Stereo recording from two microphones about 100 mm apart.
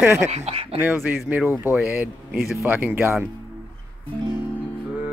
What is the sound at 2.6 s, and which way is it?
Speech, 15° right (ahead or behind).